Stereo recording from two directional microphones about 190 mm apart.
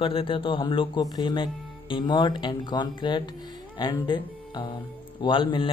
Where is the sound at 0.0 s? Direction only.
30° left (ahead or behind).